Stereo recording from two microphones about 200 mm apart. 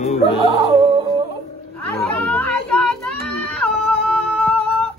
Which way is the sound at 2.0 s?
5° left (ahead or behind).